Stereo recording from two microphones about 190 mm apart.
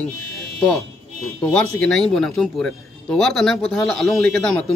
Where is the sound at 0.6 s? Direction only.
5° left (ahead or behind).